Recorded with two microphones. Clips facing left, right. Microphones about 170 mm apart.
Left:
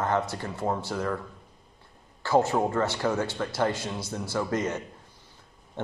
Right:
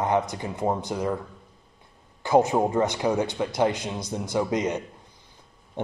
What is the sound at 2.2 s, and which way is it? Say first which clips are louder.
Speech: right 3 dB; 15° right (ahead or behind).